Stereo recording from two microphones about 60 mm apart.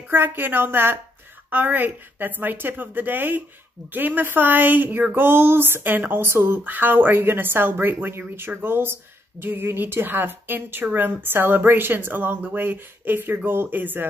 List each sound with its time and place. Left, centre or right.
0.1 s a woman's voice: right